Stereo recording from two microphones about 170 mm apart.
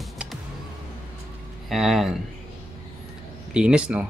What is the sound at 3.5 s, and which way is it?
Speech, 5° right (ahead or behind).